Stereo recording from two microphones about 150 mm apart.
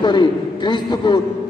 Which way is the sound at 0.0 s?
30° left (ahead or behind).